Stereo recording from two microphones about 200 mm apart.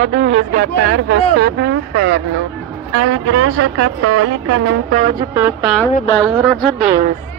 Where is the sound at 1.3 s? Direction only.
55° right (ahead or behind).